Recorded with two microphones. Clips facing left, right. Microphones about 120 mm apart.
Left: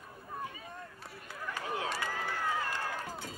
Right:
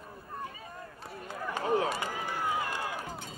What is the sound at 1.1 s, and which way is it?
Run, 45° right (ahead or behind).